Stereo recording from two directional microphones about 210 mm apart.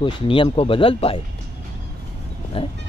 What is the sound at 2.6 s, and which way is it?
Speech, 25° left (ahead or behind).